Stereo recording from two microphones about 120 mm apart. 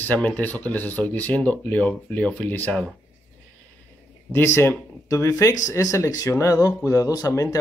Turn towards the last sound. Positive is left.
turn(degrees=25)  # may be behind; listen again after turning